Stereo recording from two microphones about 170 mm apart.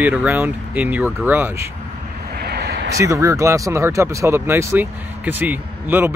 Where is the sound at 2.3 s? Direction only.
70° right (ahead or behind).